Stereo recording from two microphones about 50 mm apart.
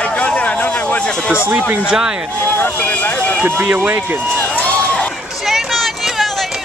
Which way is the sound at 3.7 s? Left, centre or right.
Right.